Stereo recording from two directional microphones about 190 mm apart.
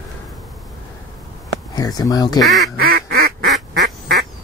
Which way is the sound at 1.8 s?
20° left (ahead or behind).